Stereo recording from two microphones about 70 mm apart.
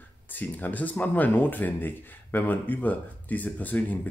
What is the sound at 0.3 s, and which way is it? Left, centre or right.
Speech, left.